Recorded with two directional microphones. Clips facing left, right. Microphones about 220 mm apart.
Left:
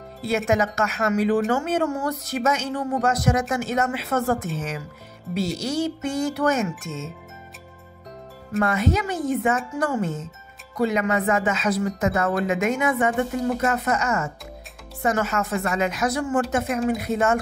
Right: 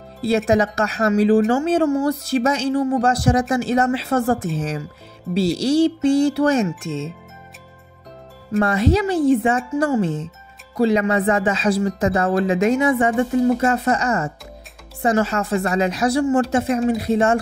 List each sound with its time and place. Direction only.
0.5 s speech: 35° right (ahead or behind)
8.5 s speech: 35° right (ahead or behind)